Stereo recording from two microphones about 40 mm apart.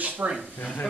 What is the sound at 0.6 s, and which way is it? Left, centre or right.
Speech, left.